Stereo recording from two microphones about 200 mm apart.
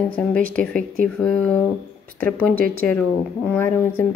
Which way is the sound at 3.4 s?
10° left (ahead or behind).